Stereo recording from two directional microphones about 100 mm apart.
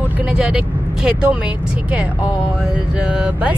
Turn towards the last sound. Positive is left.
turn(degrees=-10)  # may be behind; listen again after turning